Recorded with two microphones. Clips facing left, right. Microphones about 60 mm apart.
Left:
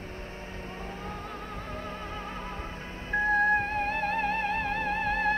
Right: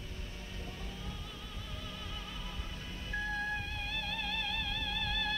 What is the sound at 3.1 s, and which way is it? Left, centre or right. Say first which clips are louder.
Music: left 13 dB; left.